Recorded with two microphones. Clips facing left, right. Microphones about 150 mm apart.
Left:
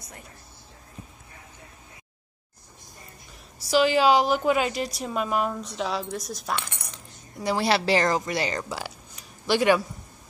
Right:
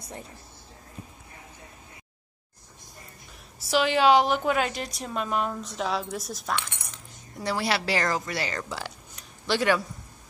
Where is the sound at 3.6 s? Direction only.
Centre (ahead or behind).